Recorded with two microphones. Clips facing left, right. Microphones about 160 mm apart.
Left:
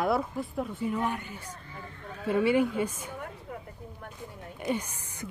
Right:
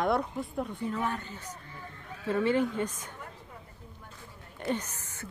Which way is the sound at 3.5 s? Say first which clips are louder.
Left 9 dB; 65° left (ahead or behind).